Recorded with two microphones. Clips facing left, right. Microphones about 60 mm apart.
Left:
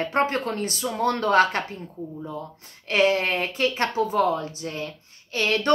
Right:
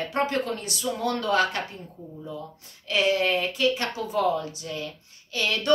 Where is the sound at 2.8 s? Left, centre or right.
Left.